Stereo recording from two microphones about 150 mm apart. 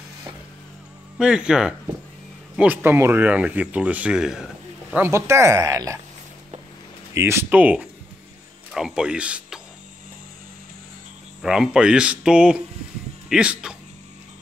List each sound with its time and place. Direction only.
1.1 s speech: 5° right (ahead or behind)
4.9 s speech: 15° right (ahead or behind)
7.2 s speech: 20° right (ahead or behind)
11.4 s speech: 5° right (ahead or behind)